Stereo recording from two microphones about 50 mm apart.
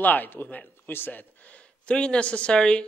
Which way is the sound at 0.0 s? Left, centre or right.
Left.